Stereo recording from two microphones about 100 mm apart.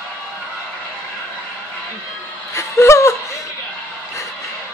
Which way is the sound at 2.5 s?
30° left (ahead or behind).